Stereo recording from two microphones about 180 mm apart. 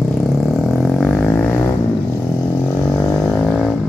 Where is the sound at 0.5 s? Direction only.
Centre (ahead or behind).